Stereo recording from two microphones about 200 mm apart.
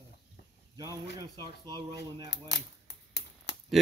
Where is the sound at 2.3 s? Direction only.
60° left (ahead or behind).